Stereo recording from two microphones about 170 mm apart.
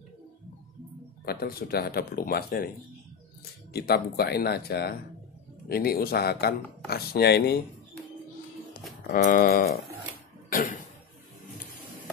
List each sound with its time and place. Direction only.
1.2 s speech: 65° left (ahead or behind)
3.7 s speech: 70° left (ahead or behind)
9.1 s speech: 55° left (ahead or behind)
10.5 s a sound: 50° left (ahead or behind)